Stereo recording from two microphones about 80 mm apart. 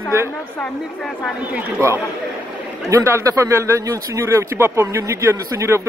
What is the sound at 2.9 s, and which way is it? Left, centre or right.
Speech, right.